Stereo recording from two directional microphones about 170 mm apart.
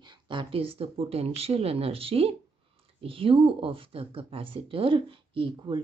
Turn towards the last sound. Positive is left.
turn(degrees=-30)  # may be behind; listen again after turning